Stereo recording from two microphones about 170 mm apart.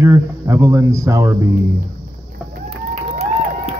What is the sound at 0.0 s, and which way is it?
Speech, 15° right (ahead or behind).